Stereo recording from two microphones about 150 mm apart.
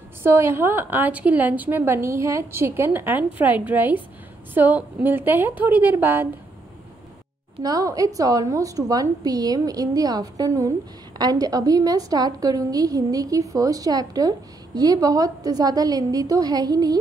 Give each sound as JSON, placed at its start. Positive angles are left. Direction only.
{"t": 0.2, "sound": "a woman's voice", "side_deg": -15}
{"t": 7.6, "sound": "a woman's voice", "side_deg": -25}